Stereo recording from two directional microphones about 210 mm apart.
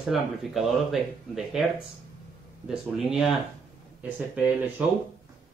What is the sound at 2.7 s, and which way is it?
Speech, centre (ahead or behind).